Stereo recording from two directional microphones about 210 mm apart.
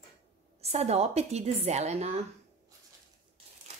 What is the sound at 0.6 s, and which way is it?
A woman's voice, 30° right (ahead or behind).